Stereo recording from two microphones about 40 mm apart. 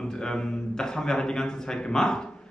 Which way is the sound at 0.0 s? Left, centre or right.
Centre.